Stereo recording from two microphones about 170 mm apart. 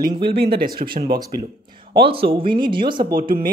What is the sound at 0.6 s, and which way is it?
Speech, 60° right (ahead or behind).